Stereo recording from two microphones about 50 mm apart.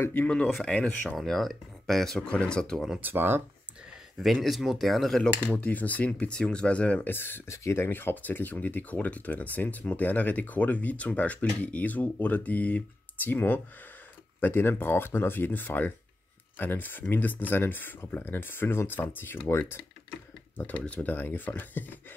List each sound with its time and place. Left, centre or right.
0.7 s speech: left
1.1 s speech: centre
2.2 s speech: centre
3.0 s speech: right
4.2 s speech: centre
5.2 s speech: left
7.0 s speech: left
7.4 s speech: left
13.3 s speech: left
20.5 s speech: left